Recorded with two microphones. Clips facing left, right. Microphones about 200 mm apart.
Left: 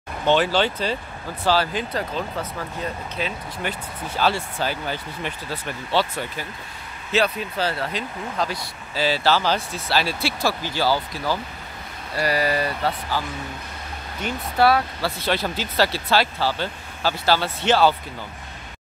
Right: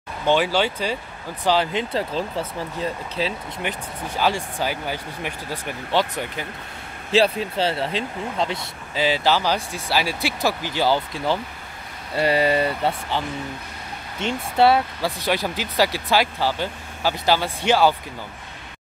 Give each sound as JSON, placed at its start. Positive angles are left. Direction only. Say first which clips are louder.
{"t": 0.3, "sound": "speech", "louder": "even", "side_deg": -10}
{"t": 3.6, "sound": "speech", "louder": "right 1 dB", "side_deg": -15}
{"t": 7.1, "sound": "speech", "louder": "right 3 dB", "side_deg": -30}
{"t": 14.2, "sound": "speech", "louder": "right 2 dB", "side_deg": -25}